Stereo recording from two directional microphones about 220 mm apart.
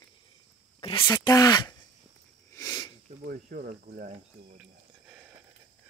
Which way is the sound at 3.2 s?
40° right (ahead or behind).